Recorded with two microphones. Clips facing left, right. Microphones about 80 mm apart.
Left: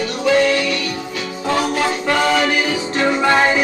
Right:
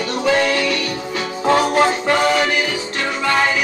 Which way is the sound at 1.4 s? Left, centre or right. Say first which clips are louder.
Right 4 dB; right.